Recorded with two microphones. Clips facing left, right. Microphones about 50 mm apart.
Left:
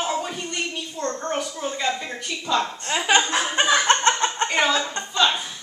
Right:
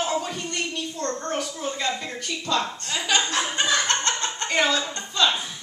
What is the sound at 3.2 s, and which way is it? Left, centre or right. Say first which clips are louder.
Chuckle: left 3 dB; centre.